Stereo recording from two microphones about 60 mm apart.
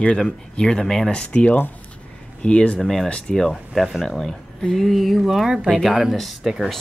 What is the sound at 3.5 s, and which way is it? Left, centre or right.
Speech, centre.